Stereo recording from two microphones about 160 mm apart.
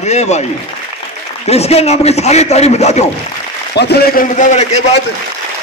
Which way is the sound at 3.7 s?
90° left.